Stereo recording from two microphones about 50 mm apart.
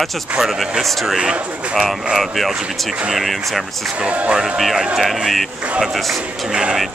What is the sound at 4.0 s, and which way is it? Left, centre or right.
Speech, right.